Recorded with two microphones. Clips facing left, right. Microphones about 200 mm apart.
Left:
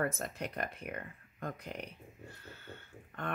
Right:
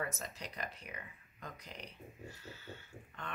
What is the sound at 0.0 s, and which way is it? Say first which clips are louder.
Speech: left 7 dB; 55° left (ahead or behind).